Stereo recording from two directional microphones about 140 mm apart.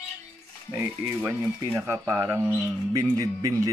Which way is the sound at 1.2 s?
15° right (ahead or behind).